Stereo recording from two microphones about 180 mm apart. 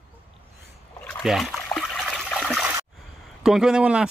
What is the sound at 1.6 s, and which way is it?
Water, 5° left (ahead or behind).